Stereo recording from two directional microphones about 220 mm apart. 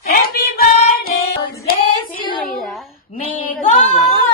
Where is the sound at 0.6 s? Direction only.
40° left (ahead or behind).